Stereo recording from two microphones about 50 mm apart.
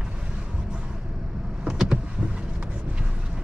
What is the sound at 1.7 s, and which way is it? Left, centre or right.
Power windows, centre.